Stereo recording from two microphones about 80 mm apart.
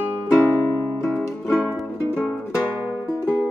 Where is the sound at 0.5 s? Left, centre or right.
Left.